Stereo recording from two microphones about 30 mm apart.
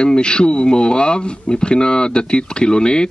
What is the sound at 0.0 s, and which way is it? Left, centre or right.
A man's voice, left.